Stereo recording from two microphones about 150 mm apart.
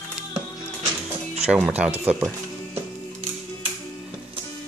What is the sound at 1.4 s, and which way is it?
Speech, 10° right (ahead or behind).